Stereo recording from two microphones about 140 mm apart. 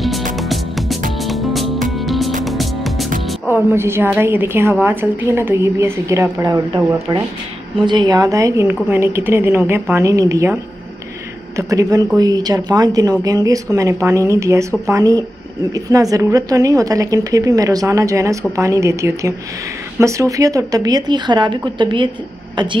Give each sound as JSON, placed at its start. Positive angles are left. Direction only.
{"t": 0.4, "sound": "music", "side_deg": 0}
{"t": 3.5, "sound": "a woman's voice", "side_deg": -15}
{"t": 7.8, "sound": "a woman's voice", "side_deg": -35}
{"t": 11.5, "sound": "a woman's voice", "side_deg": -25}